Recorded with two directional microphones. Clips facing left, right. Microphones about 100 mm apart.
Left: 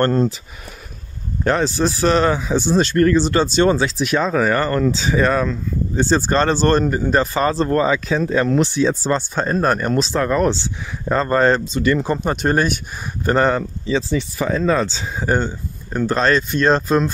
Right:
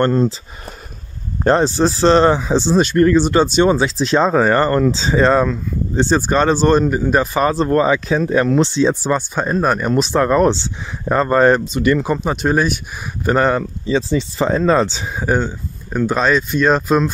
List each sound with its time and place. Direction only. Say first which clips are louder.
0.0 s speech: right 2 dB; centre (ahead or behind)
1.4 s speech: right 4 dB; 35° right (ahead or behind)
6.2 s speech: right 2 dB; 10° right (ahead or behind); by 8.9 s 25° right (ahead or behind)
9.0 s speech: right 1 dB; 10° right (ahead or behind)
9.9 s speech: right 4 dB; 20° right (ahead or behind)
12.2 s speech: right 1 dB; centre (ahead or behind)
13.9 s speech: right 3 dB; 25° right (ahead or behind)
15.2 s speech: right 1 dB; 5° right (ahead or behind)